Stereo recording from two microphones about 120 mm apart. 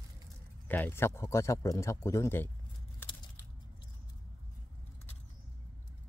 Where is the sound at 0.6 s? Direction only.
15° left (ahead or behind).